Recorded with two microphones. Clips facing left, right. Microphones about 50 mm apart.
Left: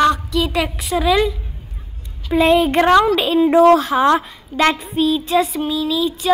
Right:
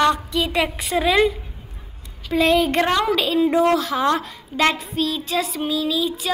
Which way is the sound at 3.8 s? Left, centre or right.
Left.